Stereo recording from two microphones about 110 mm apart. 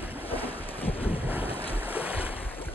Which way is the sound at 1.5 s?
15° left (ahead or behind).